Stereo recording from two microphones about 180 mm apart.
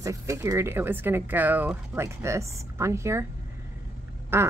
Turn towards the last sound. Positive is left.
turn(degrees=-15)  # may be behind; listen again after turning